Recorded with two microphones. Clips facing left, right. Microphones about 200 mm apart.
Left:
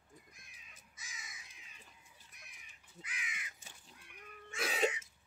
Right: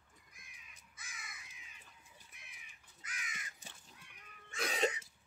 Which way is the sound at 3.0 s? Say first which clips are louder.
Even; 45° right (ahead or behind).